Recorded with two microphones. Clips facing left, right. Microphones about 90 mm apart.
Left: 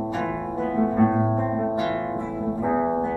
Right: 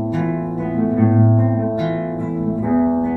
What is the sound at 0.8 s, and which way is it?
Music, 20° left (ahead or behind).